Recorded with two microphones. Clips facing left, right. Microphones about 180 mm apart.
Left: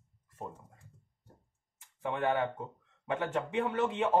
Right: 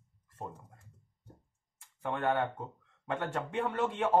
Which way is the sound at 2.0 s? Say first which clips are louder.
Even; centre (ahead or behind).